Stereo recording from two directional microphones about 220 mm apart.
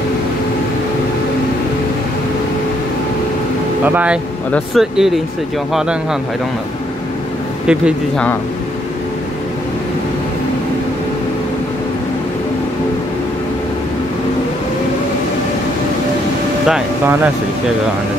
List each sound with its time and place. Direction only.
3.8 s speech: 5° right (ahead or behind)
7.6 s speech: 5° right (ahead or behind)
16.6 s speech: 5° right (ahead or behind)